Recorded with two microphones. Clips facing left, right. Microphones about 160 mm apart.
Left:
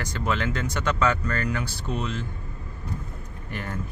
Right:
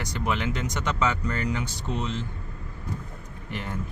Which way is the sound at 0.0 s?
15° right (ahead or behind).